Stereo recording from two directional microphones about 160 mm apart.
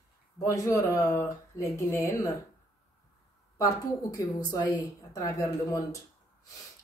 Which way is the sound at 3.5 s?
25° left (ahead or behind).